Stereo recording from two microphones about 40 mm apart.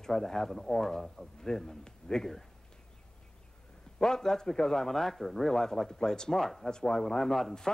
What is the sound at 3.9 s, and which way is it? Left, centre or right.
Speech, centre.